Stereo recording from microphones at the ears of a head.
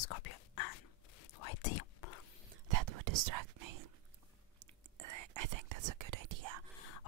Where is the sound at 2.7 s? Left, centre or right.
Right.